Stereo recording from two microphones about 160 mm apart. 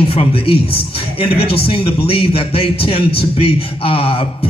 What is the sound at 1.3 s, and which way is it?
Speech, 80° left.